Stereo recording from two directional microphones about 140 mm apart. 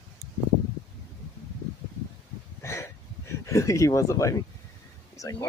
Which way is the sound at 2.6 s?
20° left (ahead or behind).